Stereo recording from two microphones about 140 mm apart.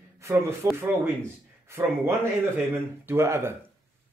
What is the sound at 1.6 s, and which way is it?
Speech, 20° right (ahead or behind).